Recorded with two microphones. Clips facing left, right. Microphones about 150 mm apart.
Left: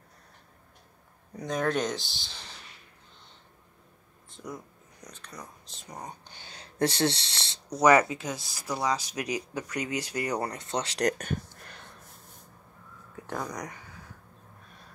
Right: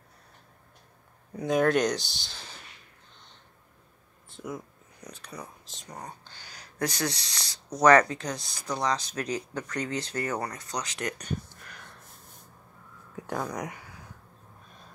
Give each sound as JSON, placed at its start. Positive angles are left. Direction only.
{"t": 1.3, "sound": "speech", "side_deg": -5}
{"t": 4.3, "sound": "a sound", "side_deg": -5}
{"t": 5.0, "sound": "speech", "side_deg": -10}
{"t": 5.8, "sound": "speech", "side_deg": 10}
{"t": 7.7, "sound": "speech", "side_deg": 5}
{"t": 10.4, "sound": "speech", "side_deg": 25}
{"t": 13.3, "sound": "speech", "side_deg": -5}